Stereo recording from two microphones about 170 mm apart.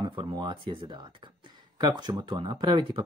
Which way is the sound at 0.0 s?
30° right (ahead or behind).